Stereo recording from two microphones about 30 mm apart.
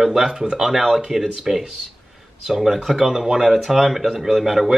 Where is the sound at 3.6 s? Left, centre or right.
Centre.